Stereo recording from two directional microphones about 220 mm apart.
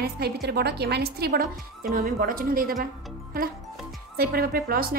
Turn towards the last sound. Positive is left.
turn(degrees=-40)  # may be behind; listen again after turning